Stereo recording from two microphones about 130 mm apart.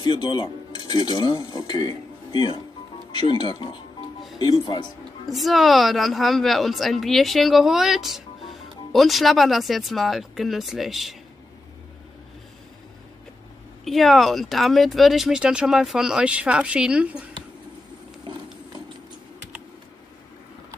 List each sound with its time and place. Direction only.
0.0 s speech: 35° left (ahead or behind)
5.3 s speech: centre (ahead or behind)
13.8 s speech: centre (ahead or behind)